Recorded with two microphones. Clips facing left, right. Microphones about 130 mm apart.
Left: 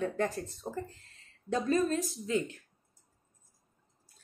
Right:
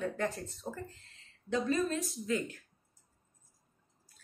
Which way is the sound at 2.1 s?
25° left (ahead or behind).